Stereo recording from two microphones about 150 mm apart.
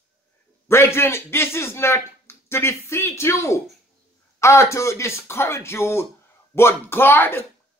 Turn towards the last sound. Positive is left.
turn(degrees=15)  # may be behind; listen again after turning